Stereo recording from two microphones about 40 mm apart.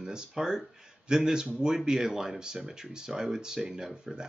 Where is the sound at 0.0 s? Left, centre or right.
Centre.